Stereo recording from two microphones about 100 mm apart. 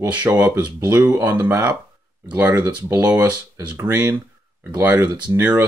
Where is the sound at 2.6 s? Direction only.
40° right (ahead or behind).